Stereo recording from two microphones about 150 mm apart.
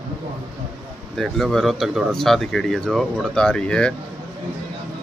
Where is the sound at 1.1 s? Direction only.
Centre (ahead or behind).